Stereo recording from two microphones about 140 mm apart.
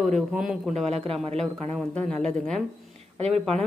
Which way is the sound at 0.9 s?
50° right (ahead or behind).